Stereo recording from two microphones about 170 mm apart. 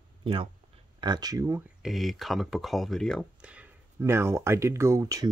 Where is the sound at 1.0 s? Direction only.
25° right (ahead or behind).